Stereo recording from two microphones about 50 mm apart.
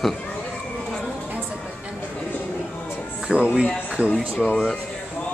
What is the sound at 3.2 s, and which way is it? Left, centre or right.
Speech, right.